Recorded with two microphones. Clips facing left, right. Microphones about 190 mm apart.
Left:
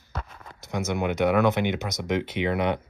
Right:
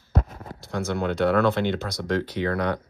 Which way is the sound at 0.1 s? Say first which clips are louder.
Right 9 dB; 40° right (ahead or behind).